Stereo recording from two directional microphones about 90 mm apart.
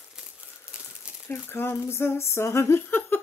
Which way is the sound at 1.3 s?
25° left (ahead or behind).